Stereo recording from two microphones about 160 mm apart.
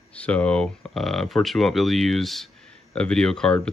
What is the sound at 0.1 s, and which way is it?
Speech, 10° left (ahead or behind).